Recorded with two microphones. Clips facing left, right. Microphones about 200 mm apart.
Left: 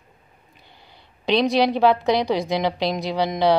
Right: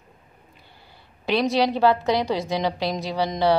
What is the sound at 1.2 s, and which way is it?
Speech, 15° left (ahead or behind).